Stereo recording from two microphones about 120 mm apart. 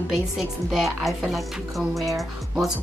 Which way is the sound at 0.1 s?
Centre (ahead or behind).